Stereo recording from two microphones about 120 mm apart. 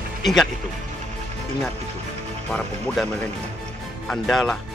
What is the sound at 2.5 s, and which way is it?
Speech, centre (ahead or behind).